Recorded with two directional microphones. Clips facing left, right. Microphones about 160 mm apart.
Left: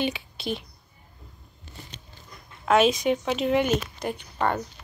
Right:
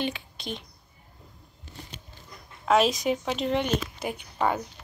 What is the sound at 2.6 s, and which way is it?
Speech, centre (ahead or behind).